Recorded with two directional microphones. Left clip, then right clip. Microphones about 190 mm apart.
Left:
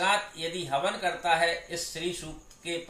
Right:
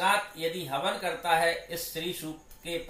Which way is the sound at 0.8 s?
15° left (ahead or behind).